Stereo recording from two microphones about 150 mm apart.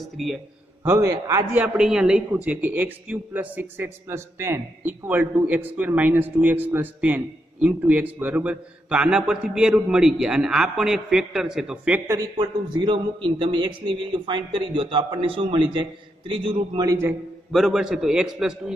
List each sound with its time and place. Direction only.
0.0 s a man's voice: centre (ahead or behind)
0.8 s a man's voice: 20° right (ahead or behind)
1.5 s speech: 10° right (ahead or behind)
12.1 s a man's voice: 20° right (ahead or behind)
12.6 s a man's voice: 30° right (ahead or behind)
17.5 s a man's voice: centre (ahead or behind)